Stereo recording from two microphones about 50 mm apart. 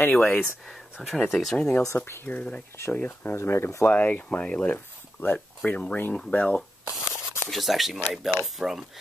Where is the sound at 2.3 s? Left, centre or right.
Left.